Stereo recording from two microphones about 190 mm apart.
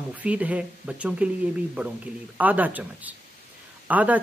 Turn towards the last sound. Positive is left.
turn(degrees=-10)  # may be behind; listen again after turning